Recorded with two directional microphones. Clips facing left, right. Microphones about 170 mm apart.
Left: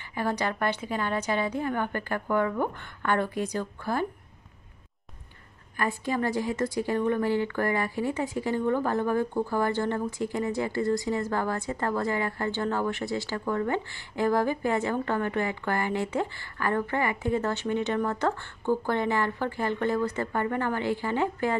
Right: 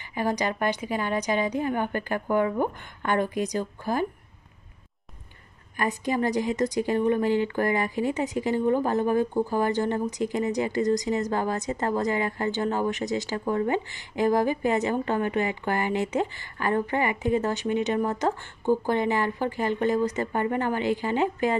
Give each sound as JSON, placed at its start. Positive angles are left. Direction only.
{"t": 0.1, "sound": "a woman's voice", "side_deg": -15}
{"t": 5.8, "sound": "a woman's voice", "side_deg": -15}